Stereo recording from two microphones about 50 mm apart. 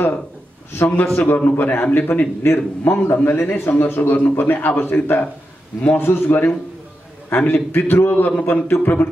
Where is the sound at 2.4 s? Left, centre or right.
Left.